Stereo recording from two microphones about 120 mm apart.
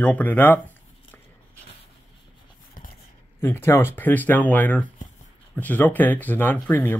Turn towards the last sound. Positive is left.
turn(degrees=15)  # may be behind; listen again after turning